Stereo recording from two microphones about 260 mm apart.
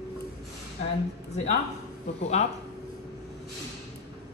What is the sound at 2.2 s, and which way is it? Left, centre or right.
Speech, left.